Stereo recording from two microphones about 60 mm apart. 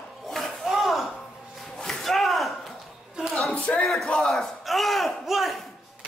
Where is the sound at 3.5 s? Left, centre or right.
Centre.